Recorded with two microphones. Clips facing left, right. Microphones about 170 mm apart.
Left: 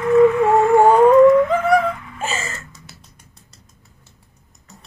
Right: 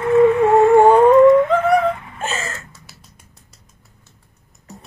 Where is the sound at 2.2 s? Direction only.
Centre (ahead or behind).